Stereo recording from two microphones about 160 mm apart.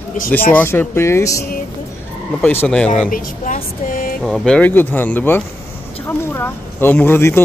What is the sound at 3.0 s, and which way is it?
Speech, 60° left (ahead or behind).